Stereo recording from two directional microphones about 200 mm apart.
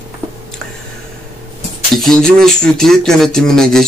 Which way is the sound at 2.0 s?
5° left (ahead or behind).